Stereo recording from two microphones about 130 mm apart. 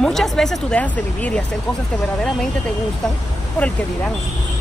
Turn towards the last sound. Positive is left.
turn(degrees=10)  # may be behind; listen again after turning